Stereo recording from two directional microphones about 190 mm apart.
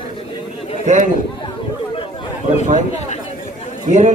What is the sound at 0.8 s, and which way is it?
Speech, 40° right (ahead or behind).